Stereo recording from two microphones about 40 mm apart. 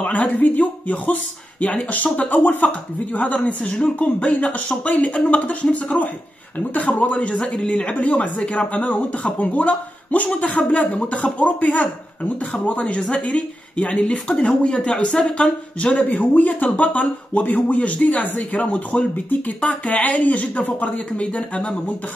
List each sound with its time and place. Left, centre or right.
0.0 s speech: left
16.0 s speech: left